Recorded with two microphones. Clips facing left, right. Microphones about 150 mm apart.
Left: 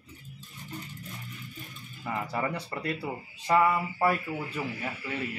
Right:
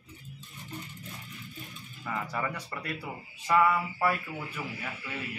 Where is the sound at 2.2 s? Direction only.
30° left (ahead or behind).